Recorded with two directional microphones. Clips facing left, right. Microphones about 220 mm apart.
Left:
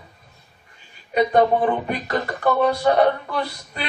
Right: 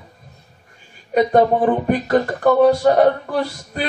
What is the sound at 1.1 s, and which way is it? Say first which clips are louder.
Speech: right 3 dB; 45° right (ahead or behind).